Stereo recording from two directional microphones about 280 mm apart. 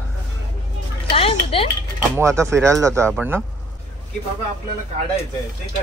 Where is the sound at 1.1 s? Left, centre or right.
Centre.